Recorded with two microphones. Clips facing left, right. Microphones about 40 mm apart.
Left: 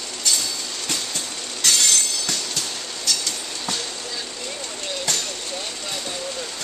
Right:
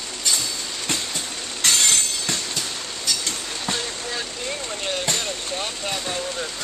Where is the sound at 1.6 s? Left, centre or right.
Right.